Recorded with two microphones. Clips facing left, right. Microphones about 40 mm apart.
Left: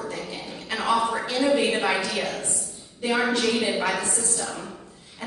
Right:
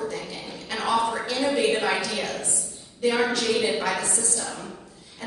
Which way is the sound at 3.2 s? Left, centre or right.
Centre.